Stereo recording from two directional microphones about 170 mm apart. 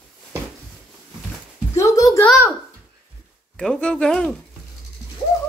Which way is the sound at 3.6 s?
5° left (ahead or behind).